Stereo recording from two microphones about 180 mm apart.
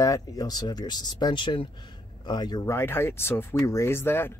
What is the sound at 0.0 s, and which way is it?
Speech, 20° left (ahead or behind).